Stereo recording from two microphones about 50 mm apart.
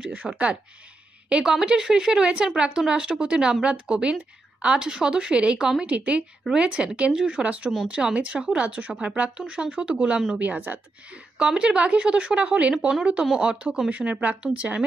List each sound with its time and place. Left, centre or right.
0.0 s a woman's voice: right
1.4 s a woman's voice: centre
7.3 s a woman's voice: right
11.3 s a woman's voice: centre
13.2 s speech: centre
13.5 s a woman's voice: right